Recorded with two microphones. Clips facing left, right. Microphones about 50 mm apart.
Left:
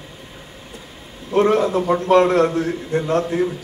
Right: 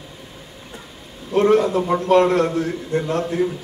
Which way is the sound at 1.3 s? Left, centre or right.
Left.